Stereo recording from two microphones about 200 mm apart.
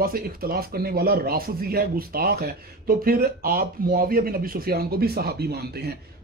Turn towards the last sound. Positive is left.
turn(degrees=-50)  # may be behind; listen again after turning